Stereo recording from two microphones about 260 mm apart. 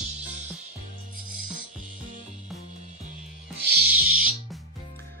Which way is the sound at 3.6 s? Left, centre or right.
Right.